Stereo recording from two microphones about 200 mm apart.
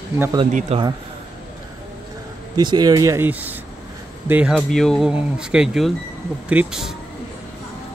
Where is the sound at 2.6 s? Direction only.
20° right (ahead or behind); by 6.9 s 5° right (ahead or behind).